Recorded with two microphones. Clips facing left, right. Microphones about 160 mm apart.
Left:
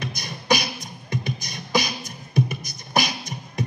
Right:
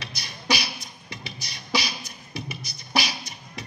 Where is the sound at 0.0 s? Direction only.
50° left (ahead or behind).